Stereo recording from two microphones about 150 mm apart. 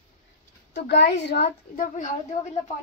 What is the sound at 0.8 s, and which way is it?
A woman's voice, 90° left.